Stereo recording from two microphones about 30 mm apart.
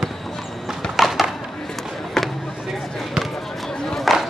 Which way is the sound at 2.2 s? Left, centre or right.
Centre.